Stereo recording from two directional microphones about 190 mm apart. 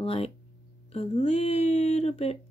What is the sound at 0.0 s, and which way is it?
Speech, 30° left (ahead or behind).